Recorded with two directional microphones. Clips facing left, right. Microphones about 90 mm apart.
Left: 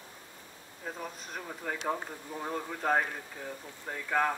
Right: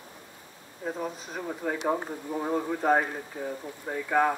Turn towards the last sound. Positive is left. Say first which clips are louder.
# right 5 dB
turn(degrees=-10)  # may be behind; listen again after turning